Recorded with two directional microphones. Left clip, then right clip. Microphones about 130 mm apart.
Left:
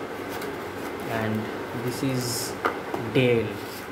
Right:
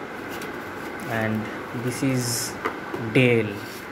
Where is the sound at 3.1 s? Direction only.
20° right (ahead or behind).